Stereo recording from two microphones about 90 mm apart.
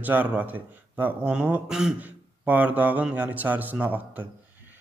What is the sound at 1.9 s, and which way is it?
A man's voice, 20° right (ahead or behind).